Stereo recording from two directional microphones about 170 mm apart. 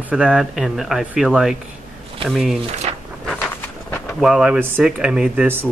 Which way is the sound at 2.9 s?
35° right (ahead or behind).